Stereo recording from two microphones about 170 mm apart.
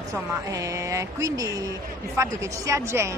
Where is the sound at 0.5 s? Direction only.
20° right (ahead or behind).